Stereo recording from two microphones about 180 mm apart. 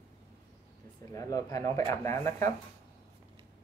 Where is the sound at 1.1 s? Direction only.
20° left (ahead or behind).